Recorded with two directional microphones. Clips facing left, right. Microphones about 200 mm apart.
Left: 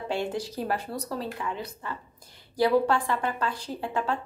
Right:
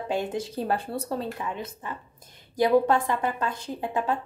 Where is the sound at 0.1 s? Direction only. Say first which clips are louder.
Right 1 dB; 20° right (ahead or behind).